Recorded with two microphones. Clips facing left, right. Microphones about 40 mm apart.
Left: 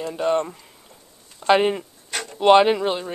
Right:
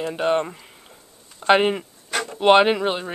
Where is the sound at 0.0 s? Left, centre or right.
Right.